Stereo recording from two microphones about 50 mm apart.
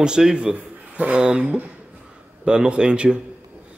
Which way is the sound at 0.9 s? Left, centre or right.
Right.